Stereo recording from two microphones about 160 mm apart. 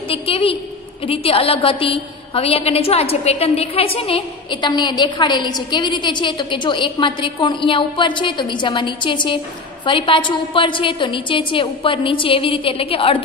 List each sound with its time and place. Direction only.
0.1 s a woman's voice: 35° left (ahead or behind)